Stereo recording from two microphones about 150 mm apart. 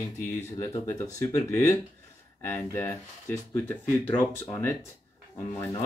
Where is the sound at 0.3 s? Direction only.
20° left (ahead or behind).